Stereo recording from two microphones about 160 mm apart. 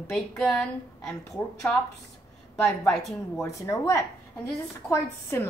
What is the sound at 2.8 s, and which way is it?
Speech, centre (ahead or behind).